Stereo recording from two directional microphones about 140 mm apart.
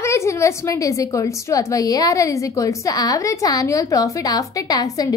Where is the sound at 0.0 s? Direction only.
20° left (ahead or behind).